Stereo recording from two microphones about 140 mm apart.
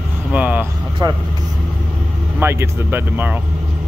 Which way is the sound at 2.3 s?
15° right (ahead or behind).